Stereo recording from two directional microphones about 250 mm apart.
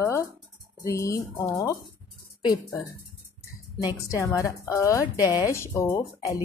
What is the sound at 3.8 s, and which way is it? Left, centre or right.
Speech, centre.